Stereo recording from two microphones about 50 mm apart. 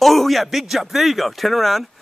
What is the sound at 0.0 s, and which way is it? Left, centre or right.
Speech, centre.